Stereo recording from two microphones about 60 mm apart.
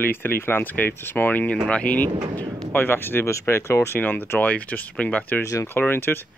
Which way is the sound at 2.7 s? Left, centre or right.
Left.